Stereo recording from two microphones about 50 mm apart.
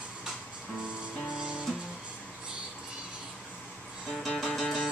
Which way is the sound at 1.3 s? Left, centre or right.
Right.